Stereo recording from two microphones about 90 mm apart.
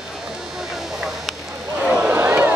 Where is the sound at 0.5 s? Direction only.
5° right (ahead or behind).